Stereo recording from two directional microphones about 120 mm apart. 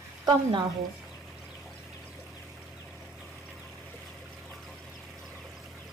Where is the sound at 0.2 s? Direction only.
40° right (ahead or behind).